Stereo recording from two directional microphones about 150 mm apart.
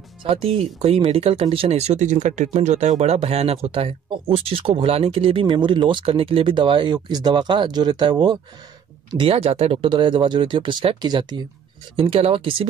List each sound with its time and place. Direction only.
0.2 s speech: 40° right (ahead or behind)
12.0 s speech: 40° right (ahead or behind)